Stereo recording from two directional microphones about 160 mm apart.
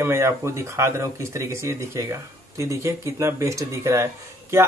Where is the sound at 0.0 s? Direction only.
15° right (ahead or behind).